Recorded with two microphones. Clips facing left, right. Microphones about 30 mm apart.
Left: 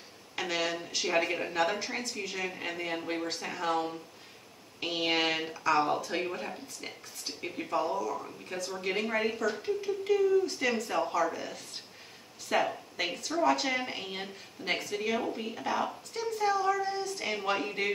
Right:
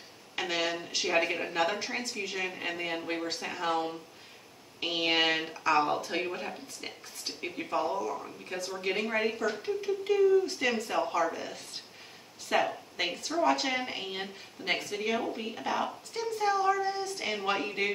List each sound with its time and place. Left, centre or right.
0.4 s a woman's voice: centre